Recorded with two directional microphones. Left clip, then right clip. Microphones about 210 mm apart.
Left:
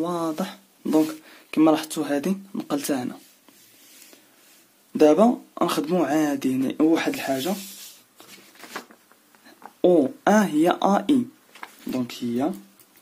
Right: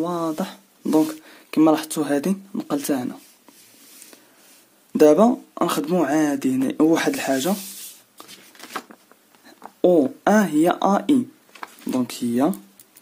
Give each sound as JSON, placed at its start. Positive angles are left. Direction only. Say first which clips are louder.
{"t": 0.0, "sound": "speech", "louder": "right 2 dB", "side_deg": -15}
{"t": 4.9, "sound": "speech", "louder": "right 2 dB", "side_deg": -25}
{"t": 9.6, "sound": "speech", "louder": "right 2 dB", "side_deg": -15}
{"t": 11.9, "sound": "speech", "louder": "right 4 dB", "side_deg": -25}